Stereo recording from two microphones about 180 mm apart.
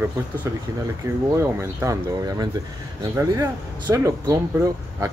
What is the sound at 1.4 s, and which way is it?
Speech, 15° right (ahead or behind).